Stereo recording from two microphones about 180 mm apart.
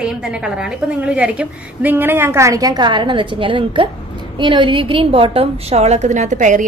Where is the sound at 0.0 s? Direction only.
5° right (ahead or behind).